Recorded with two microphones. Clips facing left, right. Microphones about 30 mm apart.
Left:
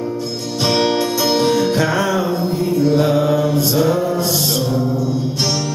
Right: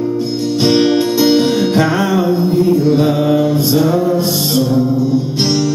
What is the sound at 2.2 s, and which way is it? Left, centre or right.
Mantra, centre.